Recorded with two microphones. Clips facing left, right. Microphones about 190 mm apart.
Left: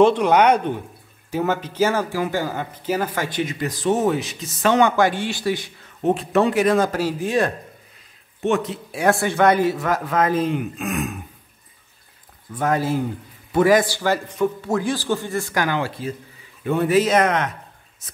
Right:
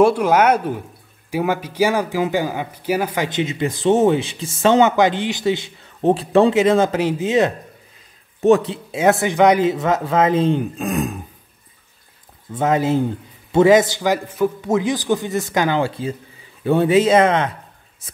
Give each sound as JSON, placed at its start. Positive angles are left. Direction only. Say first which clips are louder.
{"t": 0.0, "sound": "speech", "louder": "right 1 dB", "side_deg": -5}
{"t": 3.3, "sound": "speech", "louder": "right 3 dB", "side_deg": -25}
{"t": 8.4, "sound": "speech", "louder": "right 7 dB", "side_deg": -35}
{"t": 8.9, "sound": "speech", "louder": "right 3 dB", "side_deg": -20}
{"t": 12.5, "sound": "speech", "louder": "right 4 dB", "side_deg": -20}
{"t": 14.7, "sound": "speech", "louder": "right 3 dB", "side_deg": -20}